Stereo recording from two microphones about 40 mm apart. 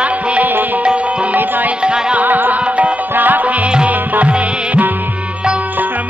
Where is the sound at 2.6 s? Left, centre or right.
Right.